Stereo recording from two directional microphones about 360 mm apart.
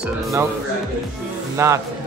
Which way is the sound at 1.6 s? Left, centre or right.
Centre.